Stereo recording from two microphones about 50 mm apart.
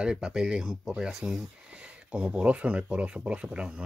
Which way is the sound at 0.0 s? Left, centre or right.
Centre.